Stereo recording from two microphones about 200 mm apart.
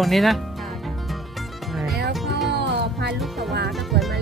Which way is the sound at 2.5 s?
55° right (ahead or behind).